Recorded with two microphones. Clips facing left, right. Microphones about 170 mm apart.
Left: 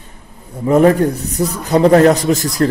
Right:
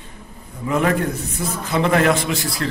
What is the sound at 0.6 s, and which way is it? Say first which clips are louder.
A man's voice: left 9 dB; 40° left (ahead or behind).